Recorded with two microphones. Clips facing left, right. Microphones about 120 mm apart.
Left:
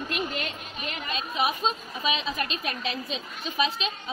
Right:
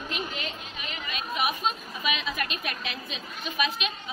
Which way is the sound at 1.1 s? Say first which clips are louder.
Left 2 dB; 30° left (ahead or behind).